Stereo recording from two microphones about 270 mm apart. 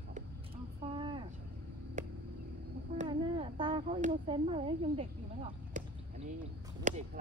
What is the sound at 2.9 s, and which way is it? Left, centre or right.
Speech, centre.